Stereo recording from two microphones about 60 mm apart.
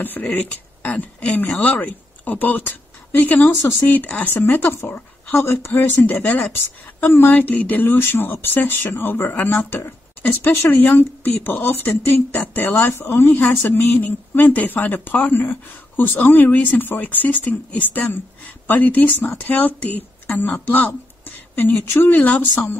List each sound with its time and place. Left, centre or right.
0.0 s speech: left
4.5 s speech: left
6.5 s speech: left
21.5 s speech: left